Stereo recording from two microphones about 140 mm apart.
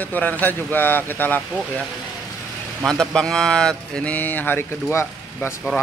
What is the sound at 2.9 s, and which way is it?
Speech, 5° left (ahead or behind).